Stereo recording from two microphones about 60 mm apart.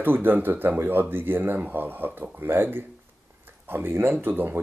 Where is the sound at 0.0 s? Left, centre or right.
Right.